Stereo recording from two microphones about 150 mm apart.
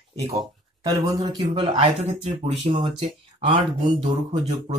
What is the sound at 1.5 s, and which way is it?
Speech, 35° right (ahead or behind).